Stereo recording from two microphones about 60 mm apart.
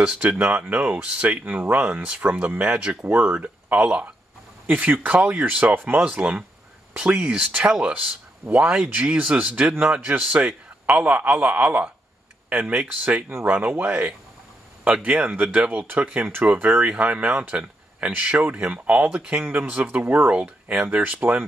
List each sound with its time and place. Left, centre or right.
0.0 s speech: right
1.4 s speech: right; by 8.9 s centre
8.9 s speech: right
15.6 s speech: centre
19.4 s speech: right
19.7 s speech: right